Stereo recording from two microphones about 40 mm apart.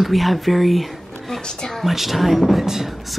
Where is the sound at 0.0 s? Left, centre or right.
Centre.